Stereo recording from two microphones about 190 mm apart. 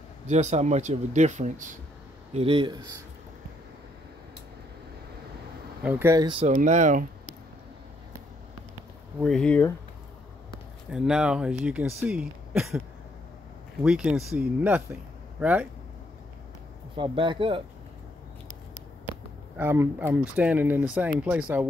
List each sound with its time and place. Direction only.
0.3 s speech: 35° right (ahead or behind)
2.3 s speech: 30° right (ahead or behind)
5.9 s speech: 10° right (ahead or behind)
6.4 s speech: 40° right (ahead or behind)
9.2 s speech: 5° left (ahead or behind)
10.9 s speech: 5° right (ahead or behind)
13.8 s speech: 5° right (ahead or behind)
16.9 s speech: 25° right (ahead or behind)
19.5 s speech: 10° right (ahead or behind)